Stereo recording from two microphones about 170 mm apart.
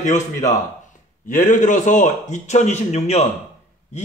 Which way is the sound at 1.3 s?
50° left (ahead or behind).